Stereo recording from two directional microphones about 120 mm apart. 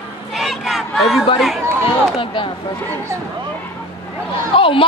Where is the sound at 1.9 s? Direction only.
45° left (ahead or behind).